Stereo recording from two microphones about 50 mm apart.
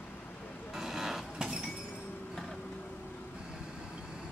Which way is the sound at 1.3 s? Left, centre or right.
Centre.